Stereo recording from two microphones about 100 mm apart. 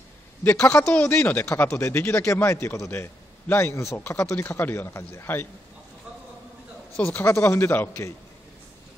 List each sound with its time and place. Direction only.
0.4 s a woman's voice: 15° left (ahead or behind)
7.2 s a man's voice: 20° left (ahead or behind)